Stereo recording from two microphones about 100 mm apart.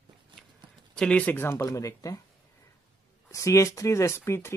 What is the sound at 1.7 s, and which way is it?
Speech, 35° left (ahead or behind).